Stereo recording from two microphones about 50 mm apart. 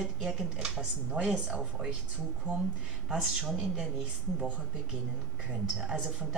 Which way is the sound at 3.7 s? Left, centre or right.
Centre.